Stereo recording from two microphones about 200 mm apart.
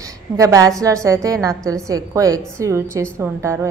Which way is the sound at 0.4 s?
15° right (ahead or behind).